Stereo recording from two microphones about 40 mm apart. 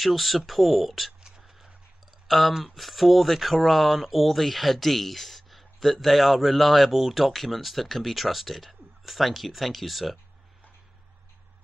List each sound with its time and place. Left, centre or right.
0.0 s speech: centre
1.2 s whispering: centre
2.2 s speech: centre